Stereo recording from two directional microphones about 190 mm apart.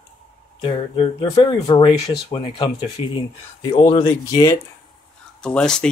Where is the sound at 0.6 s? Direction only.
25° left (ahead or behind).